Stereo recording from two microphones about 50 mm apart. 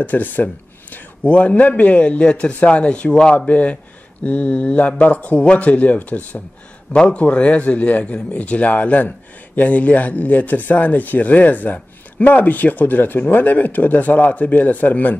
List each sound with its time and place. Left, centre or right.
0.0 s a man's voice: left; by 3.3 s centre
3.3 s a man's voice: left